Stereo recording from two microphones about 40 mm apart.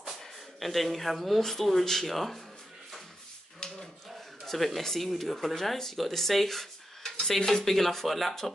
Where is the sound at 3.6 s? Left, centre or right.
Left.